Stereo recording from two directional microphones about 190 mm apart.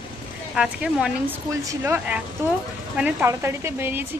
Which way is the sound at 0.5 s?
5° right (ahead or behind).